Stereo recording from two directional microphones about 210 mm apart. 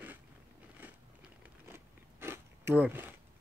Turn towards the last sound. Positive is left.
turn(degrees=-10)  # may be behind; listen again after turning